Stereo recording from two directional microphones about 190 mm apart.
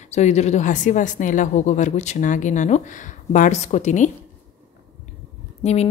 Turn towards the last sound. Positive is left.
turn(degrees=35)  # may be behind; listen again after turning